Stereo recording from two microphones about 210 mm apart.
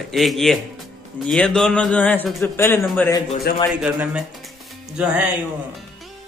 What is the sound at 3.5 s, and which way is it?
Speech, 45° left (ahead or behind).